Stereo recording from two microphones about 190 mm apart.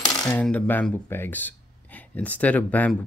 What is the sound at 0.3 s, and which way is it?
Speech, 5° left (ahead or behind).